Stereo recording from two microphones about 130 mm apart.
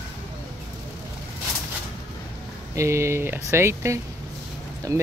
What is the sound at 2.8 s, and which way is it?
Speech, 20° right (ahead or behind).